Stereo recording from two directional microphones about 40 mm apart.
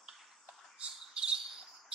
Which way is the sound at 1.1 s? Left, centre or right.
Right.